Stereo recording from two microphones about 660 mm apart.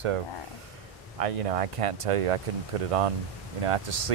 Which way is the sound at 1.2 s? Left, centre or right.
Right.